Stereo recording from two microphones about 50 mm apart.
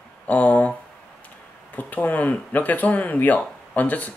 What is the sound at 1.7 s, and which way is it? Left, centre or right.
Speech, left.